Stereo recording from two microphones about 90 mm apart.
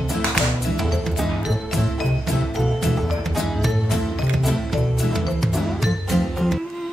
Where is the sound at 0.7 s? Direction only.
Centre (ahead or behind).